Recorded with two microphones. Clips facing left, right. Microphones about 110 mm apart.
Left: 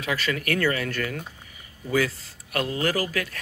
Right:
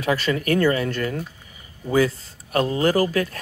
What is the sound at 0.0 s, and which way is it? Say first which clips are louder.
Speech: right 5 dB; 35° right (ahead or behind).